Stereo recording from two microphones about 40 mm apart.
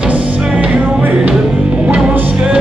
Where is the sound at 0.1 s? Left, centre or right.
Right.